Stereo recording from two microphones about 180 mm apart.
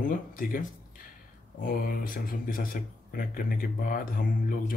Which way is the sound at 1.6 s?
55° left (ahead or behind).